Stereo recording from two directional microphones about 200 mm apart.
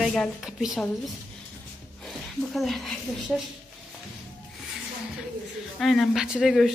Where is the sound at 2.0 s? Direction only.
Centre (ahead or behind).